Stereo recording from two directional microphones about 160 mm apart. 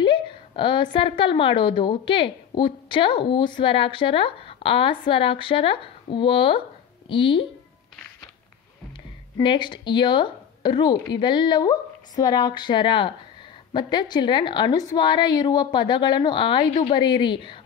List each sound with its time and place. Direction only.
0.0 s a woman's voice: 30° left (ahead or behind)
9.4 s a woman's voice: 30° left (ahead or behind)